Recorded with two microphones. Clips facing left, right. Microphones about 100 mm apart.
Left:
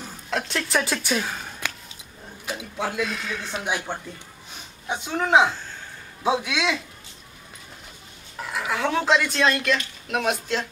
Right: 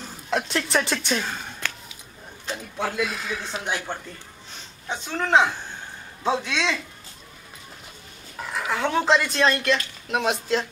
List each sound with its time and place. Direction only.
0.0 s speech: centre (ahead or behind)
1.6 s a sound: 15° left (ahead or behind)
2.4 s speech: 5° left (ahead or behind)
3.1 s speech: 5° right (ahead or behind)
3.6 s speech: 10° left (ahead or behind)
5.5 s a sound: 15° right (ahead or behind)
6.2 s speech: 10° left (ahead or behind)
8.4 s speech: centre (ahead or behind)